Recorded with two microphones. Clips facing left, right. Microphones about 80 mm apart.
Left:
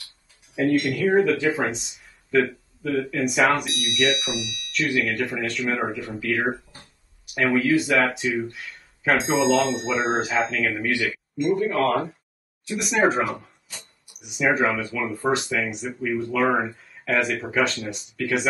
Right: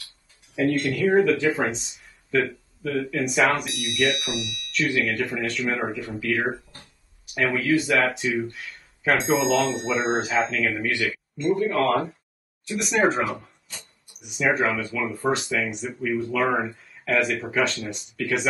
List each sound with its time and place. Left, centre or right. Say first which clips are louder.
0.7 s speech: left 3 dB; centre
0.9 s speech: even; centre